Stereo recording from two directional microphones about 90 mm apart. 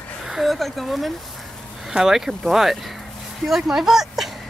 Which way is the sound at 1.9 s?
5° right (ahead or behind).